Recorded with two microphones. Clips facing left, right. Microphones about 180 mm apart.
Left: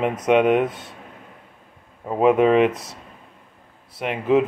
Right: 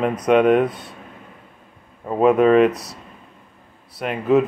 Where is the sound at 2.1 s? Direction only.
15° left (ahead or behind).